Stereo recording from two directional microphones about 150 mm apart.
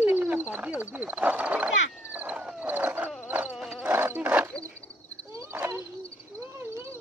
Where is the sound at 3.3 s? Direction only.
10° right (ahead or behind).